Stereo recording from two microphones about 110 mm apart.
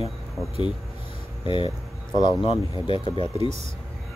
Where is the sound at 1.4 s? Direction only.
50° left (ahead or behind).